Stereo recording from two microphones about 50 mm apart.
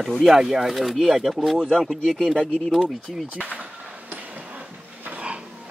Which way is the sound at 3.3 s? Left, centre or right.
Right.